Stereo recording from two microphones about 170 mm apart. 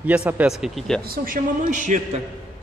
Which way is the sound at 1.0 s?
60° right (ahead or behind).